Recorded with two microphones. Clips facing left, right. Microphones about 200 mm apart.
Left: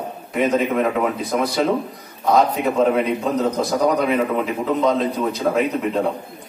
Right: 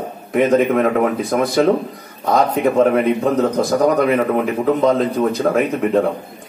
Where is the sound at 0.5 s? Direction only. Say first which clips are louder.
Right 6 dB; 55° right (ahead or behind).